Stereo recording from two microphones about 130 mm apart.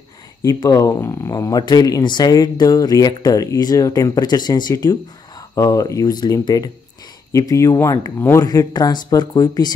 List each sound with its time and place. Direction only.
0.6 s speech: 25° left (ahead or behind)